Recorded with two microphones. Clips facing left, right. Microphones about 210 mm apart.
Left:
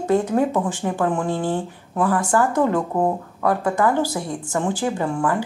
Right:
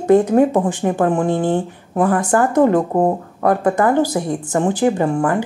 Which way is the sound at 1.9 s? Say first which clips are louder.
Right 4 dB; 50° right (ahead or behind).